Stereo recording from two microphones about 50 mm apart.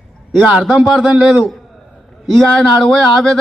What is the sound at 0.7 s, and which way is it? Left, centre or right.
Speech, centre.